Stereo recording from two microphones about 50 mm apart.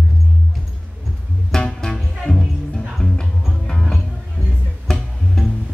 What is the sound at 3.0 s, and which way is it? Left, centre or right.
Music, centre.